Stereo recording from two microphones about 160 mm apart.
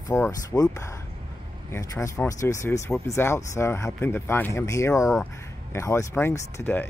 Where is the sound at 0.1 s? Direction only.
20° left (ahead or behind).